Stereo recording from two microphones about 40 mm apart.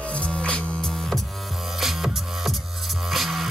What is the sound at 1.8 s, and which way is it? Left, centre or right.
Music, centre.